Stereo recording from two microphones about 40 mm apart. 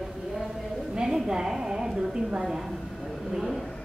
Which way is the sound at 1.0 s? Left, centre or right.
Centre.